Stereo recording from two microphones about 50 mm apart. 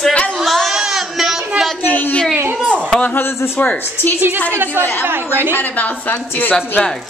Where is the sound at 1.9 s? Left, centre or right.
Left.